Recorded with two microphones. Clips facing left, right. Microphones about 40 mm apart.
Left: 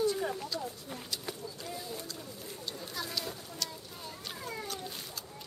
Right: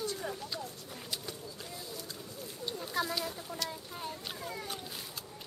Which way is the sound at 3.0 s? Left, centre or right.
Right.